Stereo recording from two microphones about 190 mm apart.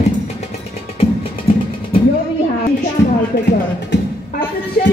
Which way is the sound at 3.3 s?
60° left (ahead or behind).